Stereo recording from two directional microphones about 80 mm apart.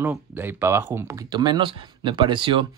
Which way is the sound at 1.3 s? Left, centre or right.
Right.